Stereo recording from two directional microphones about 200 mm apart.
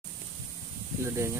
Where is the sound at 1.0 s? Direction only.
15° right (ahead or behind).